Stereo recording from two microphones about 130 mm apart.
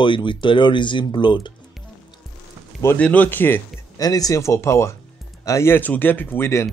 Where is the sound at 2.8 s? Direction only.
15° left (ahead or behind).